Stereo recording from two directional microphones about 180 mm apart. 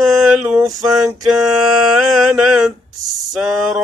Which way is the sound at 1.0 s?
20° right (ahead or behind).